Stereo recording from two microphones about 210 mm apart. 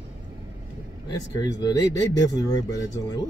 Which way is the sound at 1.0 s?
15° left (ahead or behind).